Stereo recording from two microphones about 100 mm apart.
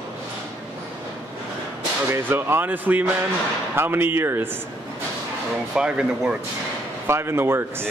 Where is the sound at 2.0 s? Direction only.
25° right (ahead or behind).